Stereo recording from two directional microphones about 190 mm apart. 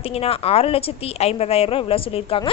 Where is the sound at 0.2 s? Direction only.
30° left (ahead or behind).